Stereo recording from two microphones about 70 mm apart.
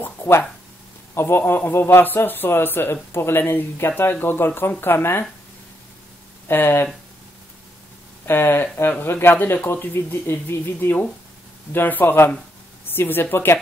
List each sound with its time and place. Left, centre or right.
0.0 s a sound: left
1.1 s a man's voice: left
6.4 s speech: left
8.3 s speech: left
9.3 s speech: left